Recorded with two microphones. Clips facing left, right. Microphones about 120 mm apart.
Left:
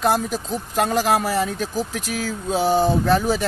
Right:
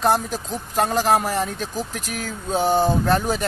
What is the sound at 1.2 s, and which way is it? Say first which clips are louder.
Speech: left 2 dB; 5° left (ahead or behind).